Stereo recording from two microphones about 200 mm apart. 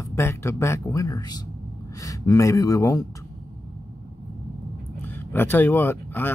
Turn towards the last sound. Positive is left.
turn(degrees=10)  # may be behind; listen again after turning